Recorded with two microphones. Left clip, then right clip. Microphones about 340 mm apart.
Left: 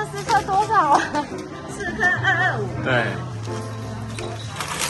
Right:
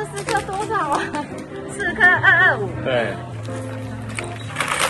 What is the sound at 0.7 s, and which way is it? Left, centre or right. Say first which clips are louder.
Speech: left 3 dB; left.